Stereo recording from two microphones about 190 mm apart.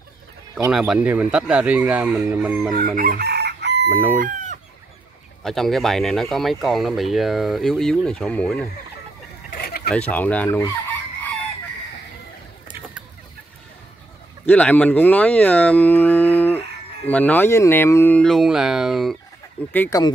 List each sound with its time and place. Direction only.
0.7 s speech: 5° right (ahead or behind)
3.0 s chicken: 55° right (ahead or behind)
3.9 s speech: 10° left (ahead or behind)
4.2 s chicken: 40° right (ahead or behind)
5.4 s speech: centre (ahead or behind)
9.5 s a sound: 55° left (ahead or behind)
9.8 s speech: 5° left (ahead or behind)
14.4 s speech: 10° left (ahead or behind)
19.7 s speech: 10° left (ahead or behind)